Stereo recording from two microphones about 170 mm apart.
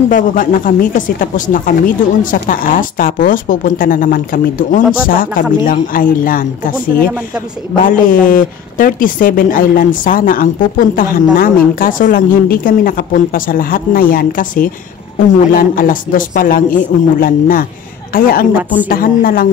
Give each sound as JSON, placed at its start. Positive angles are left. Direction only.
{"t": 0.1, "sound": "speech", "side_deg": 50}